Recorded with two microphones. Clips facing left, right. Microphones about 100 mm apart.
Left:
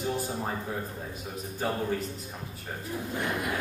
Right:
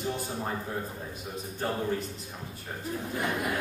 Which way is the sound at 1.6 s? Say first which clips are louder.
Left 1 dB; centre (ahead or behind).